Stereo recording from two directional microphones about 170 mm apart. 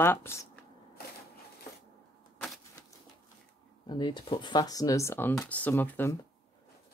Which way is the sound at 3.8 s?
25° left (ahead or behind).